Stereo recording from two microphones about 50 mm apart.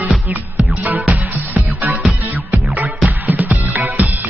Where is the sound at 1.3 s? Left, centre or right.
Right.